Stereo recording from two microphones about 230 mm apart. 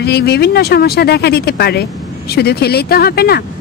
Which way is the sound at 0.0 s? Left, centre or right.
Left.